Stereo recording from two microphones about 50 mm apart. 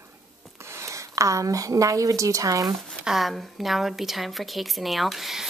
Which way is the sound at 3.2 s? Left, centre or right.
Centre.